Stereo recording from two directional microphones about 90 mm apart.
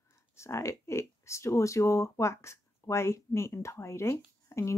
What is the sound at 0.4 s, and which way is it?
Speech, 30° left (ahead or behind).